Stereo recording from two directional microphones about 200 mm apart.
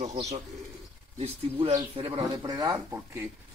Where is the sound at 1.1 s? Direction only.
30° right (ahead or behind).